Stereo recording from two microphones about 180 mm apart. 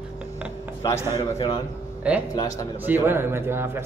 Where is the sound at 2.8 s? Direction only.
10° right (ahead or behind).